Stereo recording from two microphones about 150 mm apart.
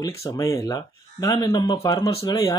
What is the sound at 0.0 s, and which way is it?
Speech, 20° left (ahead or behind).